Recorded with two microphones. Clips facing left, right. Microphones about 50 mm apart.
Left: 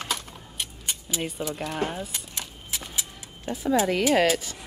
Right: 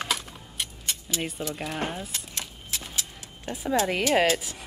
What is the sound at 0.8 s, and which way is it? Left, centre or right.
Keys jangling, centre.